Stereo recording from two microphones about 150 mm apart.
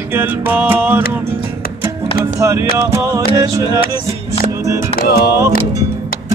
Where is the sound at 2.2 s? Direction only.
20° right (ahead or behind).